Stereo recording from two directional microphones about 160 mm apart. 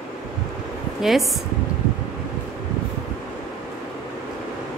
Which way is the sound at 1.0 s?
Centre (ahead or behind).